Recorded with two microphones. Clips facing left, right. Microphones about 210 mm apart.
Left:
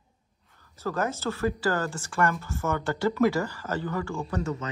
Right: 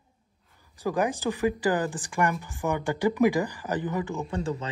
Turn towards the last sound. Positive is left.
turn(degrees=-30)  # may be behind; listen again after turning